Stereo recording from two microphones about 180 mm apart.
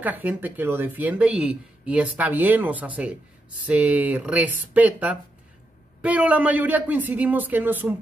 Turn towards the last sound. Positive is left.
turn(degrees=-10)  # may be behind; listen again after turning